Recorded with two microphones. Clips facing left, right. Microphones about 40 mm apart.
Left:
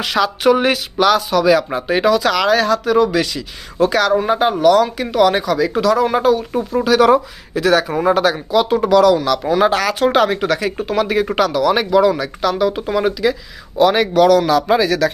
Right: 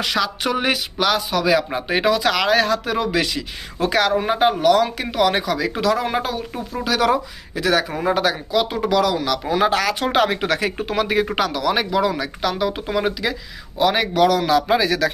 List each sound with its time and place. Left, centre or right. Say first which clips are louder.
0.0 s speech: left 6 dB; centre
1.8 s speech: left 4 dB; centre
6.8 s speech: left 6 dB; centre
10.2 s speech: left 4 dB; centre
10.5 s speech: left 3 dB; right
10.9 s speech: left 4 dB; centre
14.7 s speech: left 3 dB; centre